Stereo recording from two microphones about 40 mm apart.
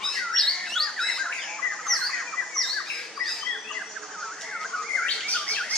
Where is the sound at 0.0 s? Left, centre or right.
Centre.